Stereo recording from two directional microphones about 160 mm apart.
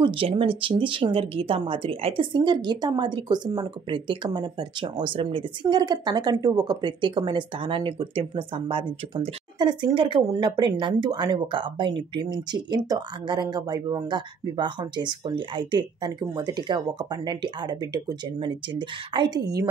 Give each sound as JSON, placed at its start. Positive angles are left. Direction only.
{"t": 0.0, "sound": "speech", "side_deg": -35}